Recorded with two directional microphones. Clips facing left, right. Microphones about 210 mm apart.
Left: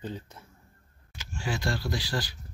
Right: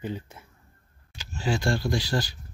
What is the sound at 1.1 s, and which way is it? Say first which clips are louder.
Camera: right 5 dB; 30° right (ahead or behind).